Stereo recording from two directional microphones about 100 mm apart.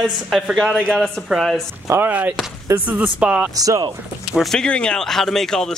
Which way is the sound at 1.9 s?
20° right (ahead or behind).